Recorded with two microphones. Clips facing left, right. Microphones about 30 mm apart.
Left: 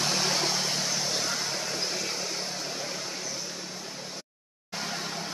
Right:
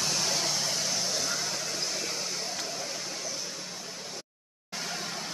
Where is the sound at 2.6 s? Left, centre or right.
Centre.